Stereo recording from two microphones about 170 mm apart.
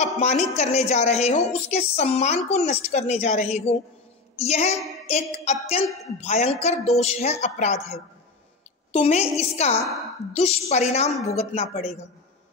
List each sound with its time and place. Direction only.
0.0 s a woman's voice: 45° left (ahead or behind)